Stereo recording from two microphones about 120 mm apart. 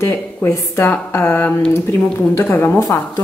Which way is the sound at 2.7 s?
30° left (ahead or behind).